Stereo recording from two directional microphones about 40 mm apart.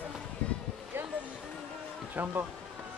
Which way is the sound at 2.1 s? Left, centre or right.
Right.